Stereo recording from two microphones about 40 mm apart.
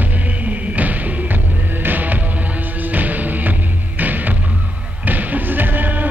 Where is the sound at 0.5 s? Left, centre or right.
Right.